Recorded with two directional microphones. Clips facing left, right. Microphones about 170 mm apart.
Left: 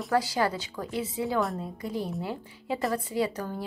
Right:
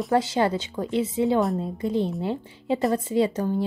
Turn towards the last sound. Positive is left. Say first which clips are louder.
# right 7 dB
turn(degrees=-25)  # may be behind; listen again after turning